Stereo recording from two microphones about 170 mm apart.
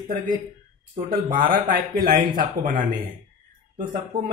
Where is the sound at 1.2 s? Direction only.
55° right (ahead or behind).